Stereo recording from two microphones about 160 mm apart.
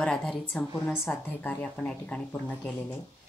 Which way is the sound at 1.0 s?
15° left (ahead or behind).